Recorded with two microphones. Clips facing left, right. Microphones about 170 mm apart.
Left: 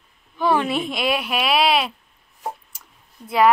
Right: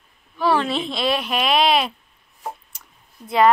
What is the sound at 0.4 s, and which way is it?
Speech, 15° left (ahead or behind).